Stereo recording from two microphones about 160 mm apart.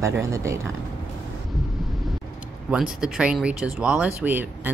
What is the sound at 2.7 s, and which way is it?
Speech, 5° right (ahead or behind).